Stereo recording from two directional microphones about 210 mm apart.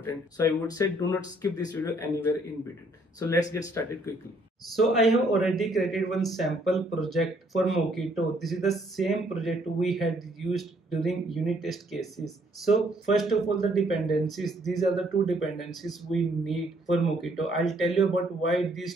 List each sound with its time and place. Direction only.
0.0 s speech: 10° left (ahead or behind)
3.2 s speech: 15° left (ahead or behind)
4.6 s a man's voice: centre (ahead or behind)